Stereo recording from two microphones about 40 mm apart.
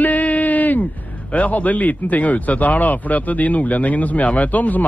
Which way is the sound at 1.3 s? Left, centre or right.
Left.